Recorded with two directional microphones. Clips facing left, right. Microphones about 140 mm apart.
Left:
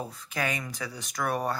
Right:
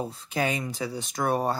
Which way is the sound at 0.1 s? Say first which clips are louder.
Right 4 dB; 30° right (ahead or behind).